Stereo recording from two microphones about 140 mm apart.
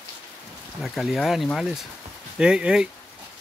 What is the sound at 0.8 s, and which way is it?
Speech, centre (ahead or behind).